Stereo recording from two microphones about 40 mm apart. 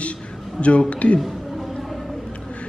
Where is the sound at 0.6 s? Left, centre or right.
Left.